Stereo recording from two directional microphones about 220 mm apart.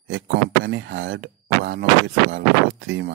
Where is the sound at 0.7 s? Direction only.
55° right (ahead or behind).